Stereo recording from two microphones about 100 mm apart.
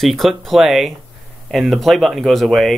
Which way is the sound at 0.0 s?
Centre (ahead or behind).